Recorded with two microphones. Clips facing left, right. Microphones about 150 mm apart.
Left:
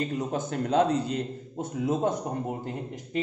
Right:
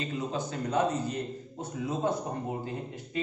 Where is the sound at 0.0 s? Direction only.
60° left (ahead or behind).